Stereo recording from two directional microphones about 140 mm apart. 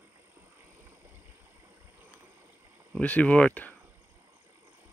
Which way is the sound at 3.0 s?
10° left (ahead or behind).